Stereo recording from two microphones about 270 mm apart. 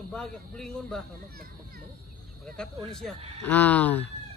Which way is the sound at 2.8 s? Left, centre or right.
Centre.